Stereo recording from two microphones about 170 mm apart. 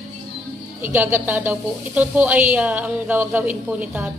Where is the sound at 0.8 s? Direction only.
10° right (ahead or behind).